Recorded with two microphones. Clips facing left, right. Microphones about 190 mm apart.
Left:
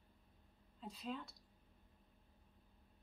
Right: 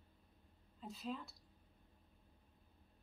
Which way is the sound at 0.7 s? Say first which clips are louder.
Right 1 dB; centre (ahead or behind).